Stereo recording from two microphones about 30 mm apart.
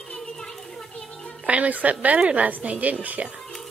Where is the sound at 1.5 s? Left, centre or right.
Right.